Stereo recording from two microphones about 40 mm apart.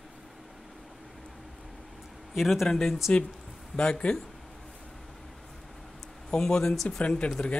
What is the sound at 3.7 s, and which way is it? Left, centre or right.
Speech, left.